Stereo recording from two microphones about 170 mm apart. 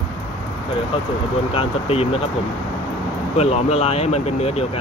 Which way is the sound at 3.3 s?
40° left (ahead or behind).